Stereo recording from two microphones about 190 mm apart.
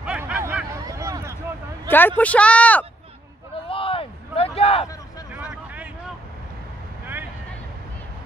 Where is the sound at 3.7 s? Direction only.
30° left (ahead or behind).